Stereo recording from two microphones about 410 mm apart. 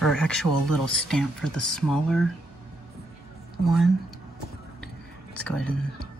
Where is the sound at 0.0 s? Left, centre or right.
Centre.